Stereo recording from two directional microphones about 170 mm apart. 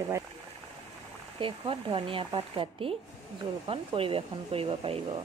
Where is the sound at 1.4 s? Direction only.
30° right (ahead or behind).